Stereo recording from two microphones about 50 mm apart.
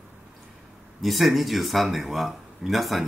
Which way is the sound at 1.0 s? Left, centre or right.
Centre.